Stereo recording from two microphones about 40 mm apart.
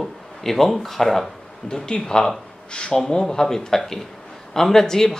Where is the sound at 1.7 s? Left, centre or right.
Centre.